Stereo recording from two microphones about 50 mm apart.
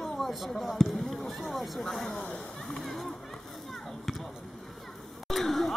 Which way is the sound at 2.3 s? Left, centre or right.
Centre.